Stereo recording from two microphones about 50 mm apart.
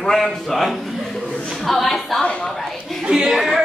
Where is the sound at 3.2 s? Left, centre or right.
Centre.